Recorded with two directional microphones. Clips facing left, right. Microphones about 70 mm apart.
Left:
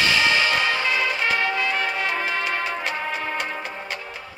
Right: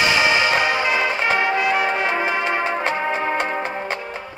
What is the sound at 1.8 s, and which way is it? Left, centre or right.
Brass instrument, right.